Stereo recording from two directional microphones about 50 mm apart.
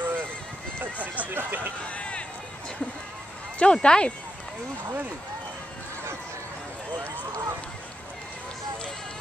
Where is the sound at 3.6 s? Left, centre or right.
Centre.